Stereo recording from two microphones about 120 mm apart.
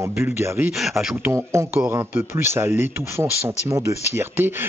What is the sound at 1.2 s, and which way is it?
A man's voice, 25° right (ahead or behind).